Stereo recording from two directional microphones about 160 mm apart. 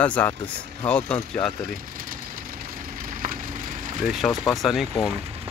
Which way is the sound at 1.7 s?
60° right (ahead or behind).